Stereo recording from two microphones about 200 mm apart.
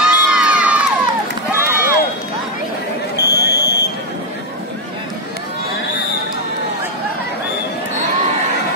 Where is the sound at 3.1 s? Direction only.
55° left (ahead or behind).